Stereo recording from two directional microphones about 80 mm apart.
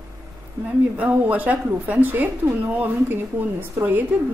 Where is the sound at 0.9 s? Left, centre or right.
Centre.